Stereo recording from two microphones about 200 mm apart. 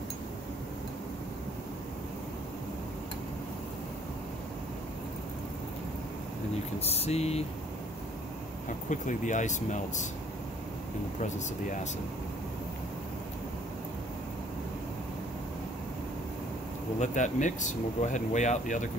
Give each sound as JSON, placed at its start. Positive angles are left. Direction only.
{"t": 6.8, "sound": "speech", "side_deg": 30}
{"t": 8.6, "sound": "speech", "side_deg": 40}
{"t": 11.1, "sound": "speech", "side_deg": 35}
{"t": 17.0, "sound": "speech", "side_deg": 35}